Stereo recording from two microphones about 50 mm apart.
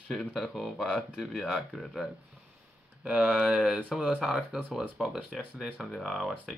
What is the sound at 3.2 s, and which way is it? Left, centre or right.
Speech, centre.